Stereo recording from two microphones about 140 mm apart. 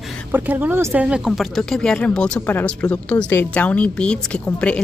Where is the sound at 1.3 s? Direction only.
Centre (ahead or behind).